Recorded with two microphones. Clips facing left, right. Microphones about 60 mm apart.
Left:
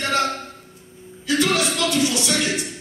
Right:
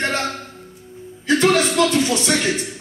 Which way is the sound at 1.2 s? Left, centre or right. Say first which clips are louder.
Right 4 dB; right.